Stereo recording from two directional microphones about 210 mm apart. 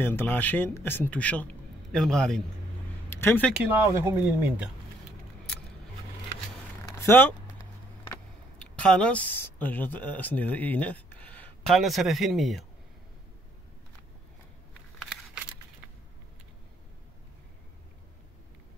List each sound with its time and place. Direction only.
0.0 s a man's voice: 10° left (ahead or behind)
3.5 s speech: 10° right (ahead or behind)
7.0 s a sound: 10° left (ahead or behind)
8.0 s speech: 10° left (ahead or behind)